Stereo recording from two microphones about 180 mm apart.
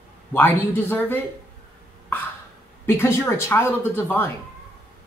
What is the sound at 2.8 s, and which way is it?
Speech, 15° left (ahead or behind).